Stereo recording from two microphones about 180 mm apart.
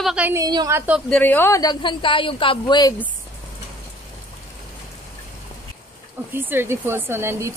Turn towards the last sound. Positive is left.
turn(degrees=-15)  # may be behind; listen again after turning